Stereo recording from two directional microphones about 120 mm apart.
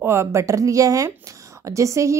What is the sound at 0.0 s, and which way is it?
A woman's voice, 20° right (ahead or behind).